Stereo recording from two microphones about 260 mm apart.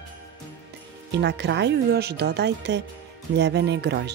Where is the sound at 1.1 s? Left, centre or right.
Right.